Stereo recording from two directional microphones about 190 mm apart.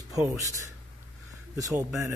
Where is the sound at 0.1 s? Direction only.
15° right (ahead or behind).